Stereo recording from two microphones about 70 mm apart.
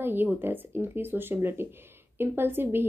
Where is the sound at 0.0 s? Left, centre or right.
Right.